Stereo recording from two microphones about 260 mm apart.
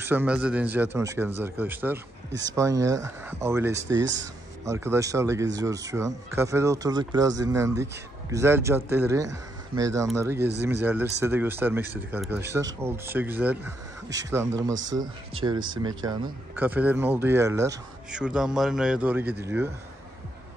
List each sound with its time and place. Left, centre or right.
0.0 s speech: centre